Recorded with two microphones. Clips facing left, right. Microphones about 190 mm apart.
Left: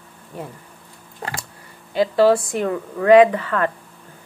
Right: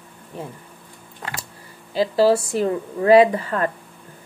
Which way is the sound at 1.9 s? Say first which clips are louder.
Left 1 dB; 30° right (ahead or behind).